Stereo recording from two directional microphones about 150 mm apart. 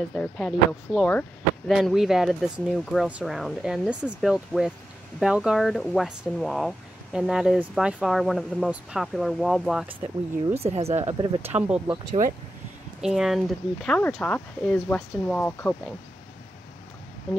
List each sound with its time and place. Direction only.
0.1 s speech: 5° left (ahead or behind)
10.5 s speech: 40° right (ahead or behind)
11.4 s speech: 10° right (ahead or behind)
11.9 s speech: 30° right (ahead or behind)
13.0 s speech: centre (ahead or behind)